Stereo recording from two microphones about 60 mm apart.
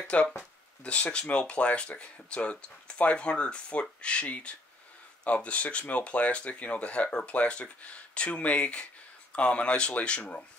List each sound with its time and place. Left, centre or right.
0.0 s speech: centre